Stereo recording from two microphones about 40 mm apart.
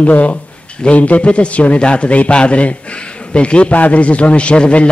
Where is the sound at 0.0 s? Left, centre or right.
Left.